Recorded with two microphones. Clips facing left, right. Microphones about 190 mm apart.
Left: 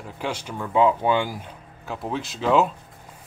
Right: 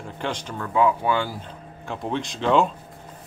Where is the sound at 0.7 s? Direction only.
20° left (ahead or behind).